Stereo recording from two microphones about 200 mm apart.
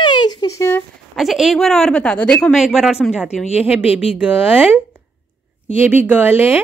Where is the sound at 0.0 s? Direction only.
20° left (ahead or behind).